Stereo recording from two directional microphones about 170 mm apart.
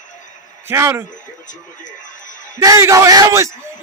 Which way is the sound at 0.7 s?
15° right (ahead or behind).